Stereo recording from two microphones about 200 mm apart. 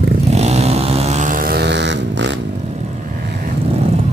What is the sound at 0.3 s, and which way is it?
Vehicle, 35° right (ahead or behind).